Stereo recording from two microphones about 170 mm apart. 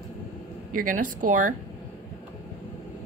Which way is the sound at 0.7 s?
50° right (ahead or behind).